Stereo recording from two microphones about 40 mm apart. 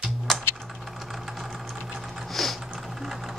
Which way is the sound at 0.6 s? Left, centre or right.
Centre.